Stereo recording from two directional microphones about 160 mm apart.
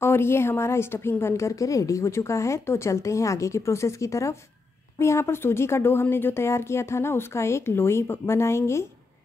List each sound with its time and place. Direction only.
0.0 s a woman's voice: 15° left (ahead or behind)